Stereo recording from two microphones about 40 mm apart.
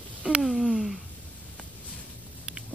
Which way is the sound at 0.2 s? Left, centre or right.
Right.